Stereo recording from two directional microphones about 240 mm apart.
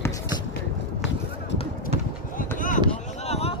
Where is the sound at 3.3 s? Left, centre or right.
Left.